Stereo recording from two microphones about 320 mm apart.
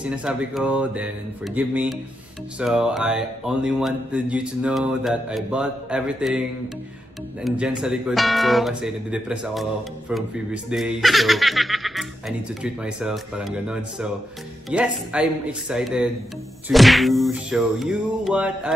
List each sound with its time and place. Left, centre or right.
0.0 s speech: centre
7.4 s speech: centre